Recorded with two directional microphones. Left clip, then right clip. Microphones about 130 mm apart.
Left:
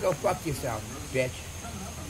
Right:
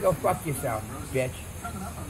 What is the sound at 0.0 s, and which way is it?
Speech, 25° left (ahead or behind).